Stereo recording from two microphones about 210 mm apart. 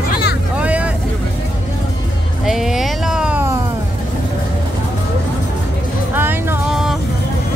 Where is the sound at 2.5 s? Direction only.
Centre (ahead or behind).